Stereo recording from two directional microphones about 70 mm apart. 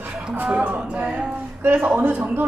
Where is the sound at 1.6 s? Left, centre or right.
Right.